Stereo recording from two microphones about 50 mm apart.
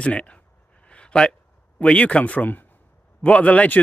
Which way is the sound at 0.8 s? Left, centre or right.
Left.